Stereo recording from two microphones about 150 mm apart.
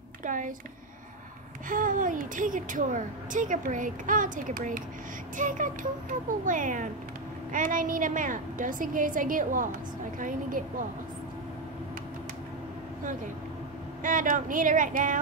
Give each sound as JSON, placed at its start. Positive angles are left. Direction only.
{"t": 0.2, "sound": "speech", "side_deg": -60}
{"t": 1.7, "sound": "a woman's voice", "side_deg": -60}
{"t": 14.0, "sound": "a woman's voice", "side_deg": -60}